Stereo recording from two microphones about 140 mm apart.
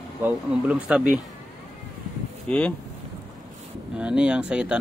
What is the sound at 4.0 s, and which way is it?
Speech, 5° right (ahead or behind).